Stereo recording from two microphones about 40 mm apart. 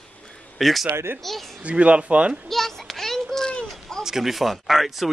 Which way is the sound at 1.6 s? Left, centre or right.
Right.